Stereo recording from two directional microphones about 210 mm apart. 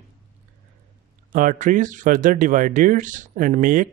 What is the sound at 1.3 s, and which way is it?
Speech, 40° right (ahead or behind).